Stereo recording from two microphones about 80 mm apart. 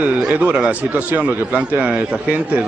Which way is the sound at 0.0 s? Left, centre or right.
Centre.